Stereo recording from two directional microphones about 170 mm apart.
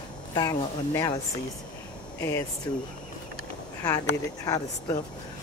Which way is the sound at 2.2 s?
20° left (ahead or behind).